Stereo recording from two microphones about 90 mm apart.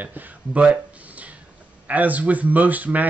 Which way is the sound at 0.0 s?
20° right (ahead or behind).